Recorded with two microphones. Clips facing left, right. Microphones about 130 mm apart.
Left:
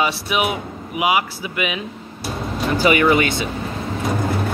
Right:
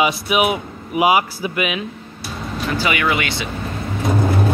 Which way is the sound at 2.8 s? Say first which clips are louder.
Left 6 dB; 35° left (ahead or behind).